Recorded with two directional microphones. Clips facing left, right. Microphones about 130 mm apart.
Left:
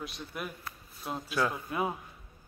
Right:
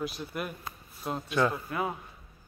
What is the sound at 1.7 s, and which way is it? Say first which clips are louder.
Speech: even; 20° left (ahead or behind).